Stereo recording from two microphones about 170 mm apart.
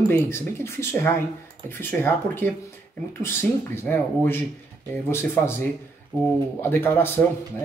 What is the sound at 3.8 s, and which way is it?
Speech, 10° left (ahead or behind).